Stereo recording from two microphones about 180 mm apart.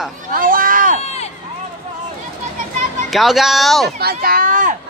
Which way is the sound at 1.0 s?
35° left (ahead or behind).